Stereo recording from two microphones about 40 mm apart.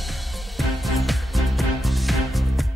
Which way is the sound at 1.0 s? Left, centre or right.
Centre.